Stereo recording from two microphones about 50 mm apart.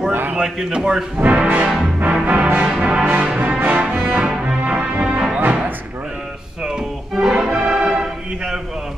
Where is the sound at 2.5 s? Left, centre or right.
Right.